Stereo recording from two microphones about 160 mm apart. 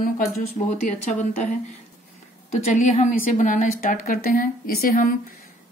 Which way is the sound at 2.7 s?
50° left (ahead or behind).